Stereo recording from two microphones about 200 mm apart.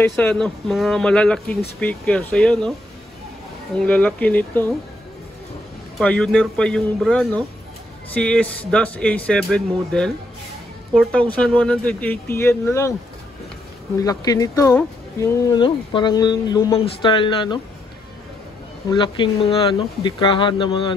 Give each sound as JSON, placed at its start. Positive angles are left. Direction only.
{"t": 0.1, "sound": "speech", "side_deg": 5}
{"t": 3.7, "sound": "speech", "side_deg": 5}
{"t": 5.9, "sound": "speech", "side_deg": 5}
{"t": 14.0, "sound": "speech", "side_deg": 15}
{"t": 15.6, "sound": "speech", "side_deg": 25}
{"t": 16.8, "sound": "speech", "side_deg": 25}
{"t": 18.9, "sound": "speech", "side_deg": 25}